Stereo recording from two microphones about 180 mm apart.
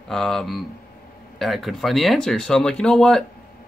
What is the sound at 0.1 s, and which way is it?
Speech, centre (ahead or behind).